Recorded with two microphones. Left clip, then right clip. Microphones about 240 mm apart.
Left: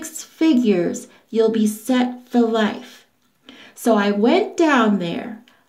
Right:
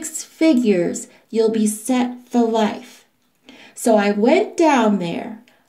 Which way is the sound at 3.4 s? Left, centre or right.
Centre.